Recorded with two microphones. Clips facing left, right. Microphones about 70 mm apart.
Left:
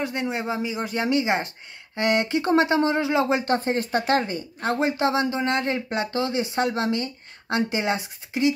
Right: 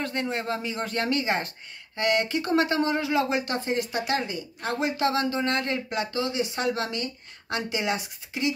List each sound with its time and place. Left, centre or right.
0.0 s speech: centre